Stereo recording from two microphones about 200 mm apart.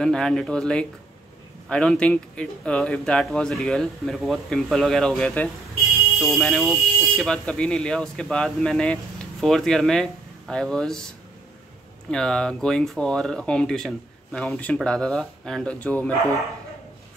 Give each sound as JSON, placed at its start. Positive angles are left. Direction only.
{"t": 0.0, "sound": "speech", "side_deg": 5}
{"t": 12.1, "sound": "speech", "side_deg": 5}